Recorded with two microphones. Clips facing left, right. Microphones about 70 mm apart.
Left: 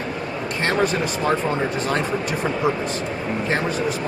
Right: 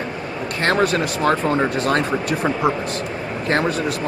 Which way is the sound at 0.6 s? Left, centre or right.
Right.